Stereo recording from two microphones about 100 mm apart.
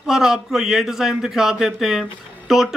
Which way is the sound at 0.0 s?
5° right (ahead or behind).